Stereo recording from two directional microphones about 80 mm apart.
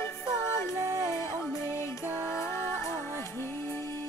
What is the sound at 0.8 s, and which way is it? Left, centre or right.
Music, right.